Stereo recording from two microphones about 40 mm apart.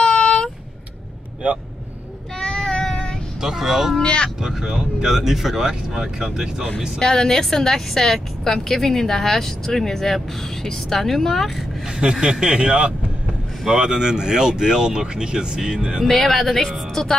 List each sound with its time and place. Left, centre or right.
0.0 s vehicle: left
2.3 s child singing: left
3.3 s speech: centre
4.0 s speech: left
4.4 s speech: centre
7.0 s speech: centre
12.0 s speech: centre
16.1 s speech: centre